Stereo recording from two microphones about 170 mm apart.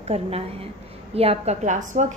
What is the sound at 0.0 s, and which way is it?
A woman's voice, 35° right (ahead or behind).